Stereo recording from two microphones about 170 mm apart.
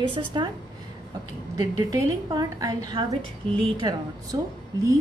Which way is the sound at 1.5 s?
20° right (ahead or behind).